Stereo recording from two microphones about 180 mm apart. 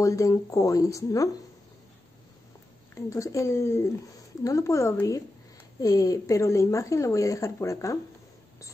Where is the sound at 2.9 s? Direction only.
15° left (ahead or behind).